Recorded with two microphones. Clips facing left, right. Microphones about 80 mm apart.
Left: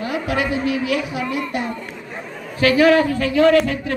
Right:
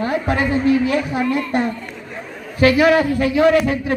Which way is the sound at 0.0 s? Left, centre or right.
Right.